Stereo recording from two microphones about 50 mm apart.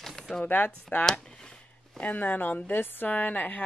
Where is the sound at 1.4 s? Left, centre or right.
Left.